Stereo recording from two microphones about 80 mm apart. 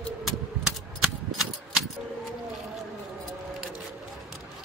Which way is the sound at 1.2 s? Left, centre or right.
Centre.